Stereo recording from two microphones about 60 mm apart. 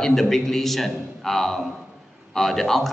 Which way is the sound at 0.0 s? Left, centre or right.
Centre.